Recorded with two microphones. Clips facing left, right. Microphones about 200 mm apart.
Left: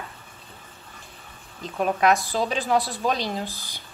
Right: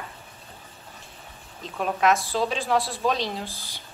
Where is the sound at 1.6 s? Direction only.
Centre (ahead or behind).